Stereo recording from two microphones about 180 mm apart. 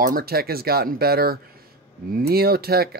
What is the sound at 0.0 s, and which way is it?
Speech, 55° right (ahead or behind).